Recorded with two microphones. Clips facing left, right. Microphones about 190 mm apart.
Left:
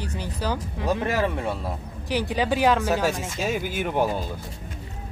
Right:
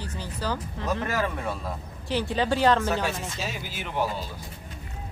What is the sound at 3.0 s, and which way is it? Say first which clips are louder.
Speech: left 6 dB; 50° left (ahead or behind).